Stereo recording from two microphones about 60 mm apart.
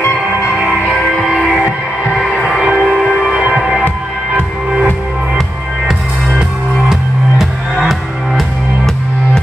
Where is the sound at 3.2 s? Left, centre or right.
Centre.